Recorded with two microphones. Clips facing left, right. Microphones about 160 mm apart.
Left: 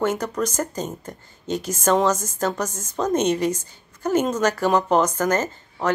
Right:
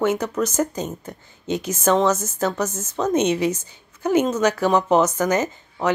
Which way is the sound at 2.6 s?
10° right (ahead or behind).